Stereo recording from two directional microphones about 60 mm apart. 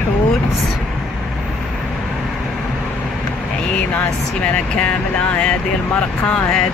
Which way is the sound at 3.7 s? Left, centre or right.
Centre.